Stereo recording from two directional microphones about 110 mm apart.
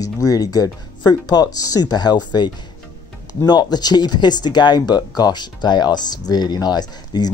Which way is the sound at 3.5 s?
40° left (ahead or behind).